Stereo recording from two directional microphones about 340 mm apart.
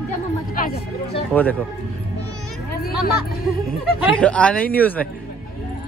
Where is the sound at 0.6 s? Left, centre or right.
Left.